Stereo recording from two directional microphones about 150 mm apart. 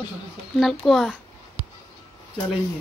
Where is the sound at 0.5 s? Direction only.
Centre (ahead or behind).